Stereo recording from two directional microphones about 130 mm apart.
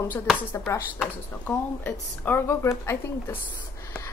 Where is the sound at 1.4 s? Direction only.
10° left (ahead or behind).